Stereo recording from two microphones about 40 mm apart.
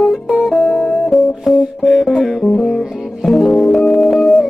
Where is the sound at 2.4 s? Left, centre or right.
Centre.